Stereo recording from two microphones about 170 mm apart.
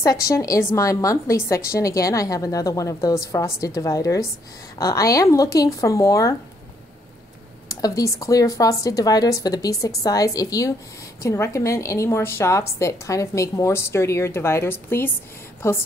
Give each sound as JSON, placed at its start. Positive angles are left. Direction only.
{"t": 0.0, "sound": "speech", "side_deg": 20}
{"t": 7.6, "sound": "a woman's voice", "side_deg": 20}